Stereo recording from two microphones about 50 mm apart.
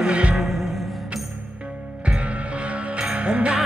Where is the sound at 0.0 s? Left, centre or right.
Right.